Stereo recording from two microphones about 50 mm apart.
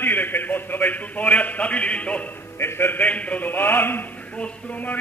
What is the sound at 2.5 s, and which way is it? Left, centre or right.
Speech, left.